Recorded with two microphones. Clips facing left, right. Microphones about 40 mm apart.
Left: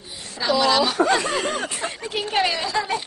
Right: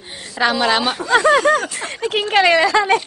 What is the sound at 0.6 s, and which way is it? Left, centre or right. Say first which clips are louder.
Speech: left 2 dB; right.